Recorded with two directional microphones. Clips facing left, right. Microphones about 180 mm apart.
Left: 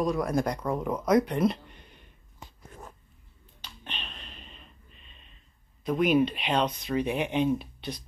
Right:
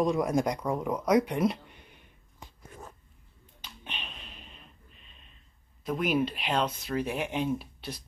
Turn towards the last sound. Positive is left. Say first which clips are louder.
# left 4 dB
turn(degrees=-5)  # may be behind; listen again after turning